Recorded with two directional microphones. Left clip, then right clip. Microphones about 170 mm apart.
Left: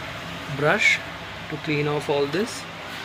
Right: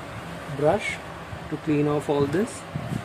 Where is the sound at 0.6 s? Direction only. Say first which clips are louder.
Left 4 dB; 15° right (ahead or behind).